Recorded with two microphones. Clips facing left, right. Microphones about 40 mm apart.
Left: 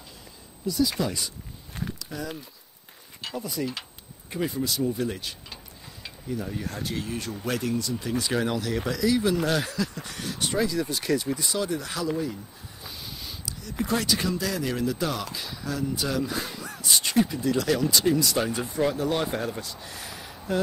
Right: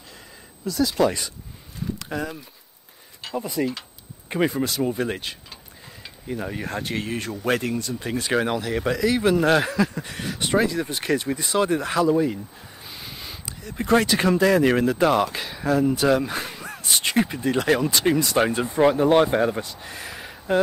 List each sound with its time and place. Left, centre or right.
0.9 s speech: right
2.0 s a sound: right
3.3 s speech: right
4.6 s speech: right
8.5 s speech: right
9.7 s speech: right
12.9 s a sound: right
13.8 s speech: right